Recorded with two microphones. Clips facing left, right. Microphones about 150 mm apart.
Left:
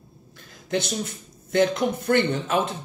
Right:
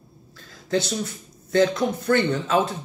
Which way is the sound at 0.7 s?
20° left (ahead or behind).